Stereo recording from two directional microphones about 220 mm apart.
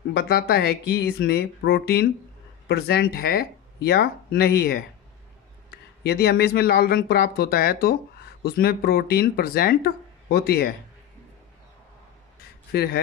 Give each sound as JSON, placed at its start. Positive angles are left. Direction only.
{"t": 0.3, "sound": "speech", "side_deg": 45}
{"t": 6.0, "sound": "speech", "side_deg": 45}
{"t": 12.7, "sound": "speech", "side_deg": 45}